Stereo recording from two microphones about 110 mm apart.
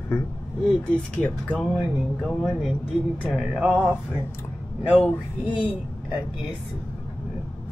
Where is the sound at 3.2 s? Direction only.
Centre (ahead or behind).